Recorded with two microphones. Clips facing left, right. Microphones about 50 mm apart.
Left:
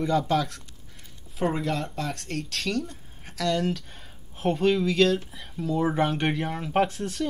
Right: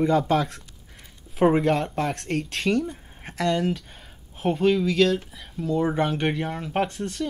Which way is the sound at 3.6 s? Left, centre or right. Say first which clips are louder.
Right 2 dB; centre.